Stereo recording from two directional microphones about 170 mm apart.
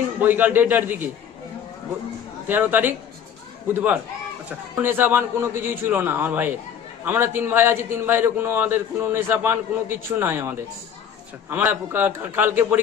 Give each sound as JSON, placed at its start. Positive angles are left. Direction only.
{"t": 0.2, "sound": "a man's voice", "side_deg": -10}
{"t": 2.4, "sound": "a man's voice", "side_deg": -10}